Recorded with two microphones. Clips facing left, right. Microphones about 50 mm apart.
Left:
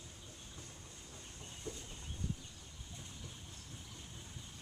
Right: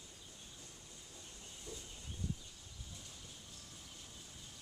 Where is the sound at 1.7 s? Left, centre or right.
Left.